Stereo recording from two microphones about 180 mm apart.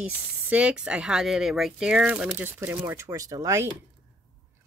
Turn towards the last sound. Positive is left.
turn(degrees=-20)  # may be behind; listen again after turning